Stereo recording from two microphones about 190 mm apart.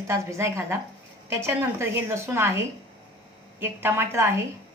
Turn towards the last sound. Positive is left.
turn(degrees=-15)  # may be behind; listen again after turning